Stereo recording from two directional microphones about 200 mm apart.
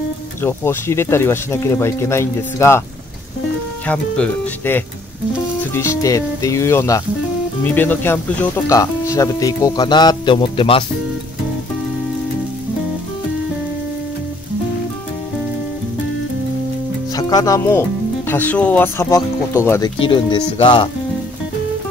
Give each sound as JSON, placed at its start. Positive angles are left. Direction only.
{"t": 0.4, "sound": "speech", "side_deg": 10}
{"t": 3.8, "sound": "speech", "side_deg": 10}
{"t": 17.1, "sound": "speech", "side_deg": 20}